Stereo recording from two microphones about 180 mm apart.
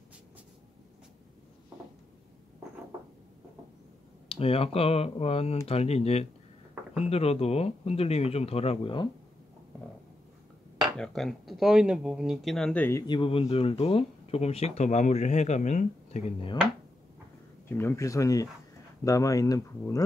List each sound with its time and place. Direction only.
4.3 s speech: 30° left (ahead or behind)
11.0 s speech: centre (ahead or behind)
13.0 s speech: 25° left (ahead or behind)
17.6 s speech: 15° left (ahead or behind)